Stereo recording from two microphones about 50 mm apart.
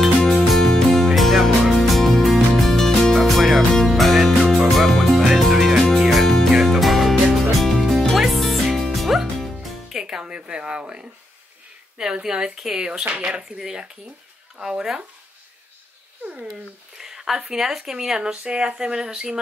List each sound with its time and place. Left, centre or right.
0.2 s music: centre
3.2 s music: centre
12.0 s speech: centre
13.0 s speech: right
17.0 s speech: centre